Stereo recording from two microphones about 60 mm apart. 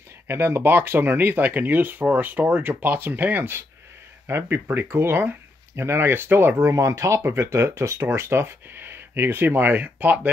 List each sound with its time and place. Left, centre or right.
0.3 s speech: right
6.7 s speech: right